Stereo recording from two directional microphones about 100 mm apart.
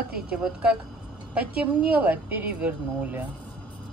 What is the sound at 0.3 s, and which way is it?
A woman's voice, 10° right (ahead or behind).